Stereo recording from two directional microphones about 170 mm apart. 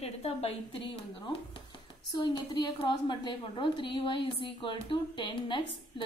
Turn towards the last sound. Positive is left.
turn(degrees=30)  # may be behind; listen again after turning